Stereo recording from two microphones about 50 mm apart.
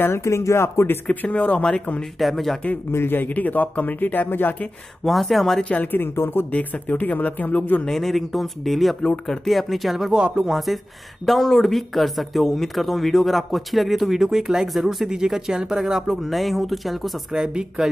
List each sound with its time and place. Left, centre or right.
0.2 s speech: left
1.0 s speech: left
2.1 s speech: centre
2.9 s speech: left
5.0 s speech: centre
5.6 s speech: left
5.9 s speech: left
6.5 s speech: left
7.9 s speech: centre
10.1 s speech: centre
10.4 s speech: centre
17.3 s speech: centre